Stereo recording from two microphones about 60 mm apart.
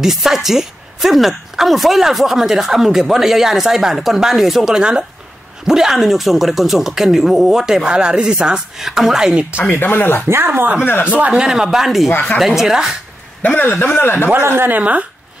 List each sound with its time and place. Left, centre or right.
0.0 s a woman's voice: centre
9.6 s speech: left
10.2 s a woman's voice: right
10.8 s speech: left
11.1 s speech: right
11.4 s a woman's voice: centre
13.4 s a man's voice: left
14.4 s a woman's voice: right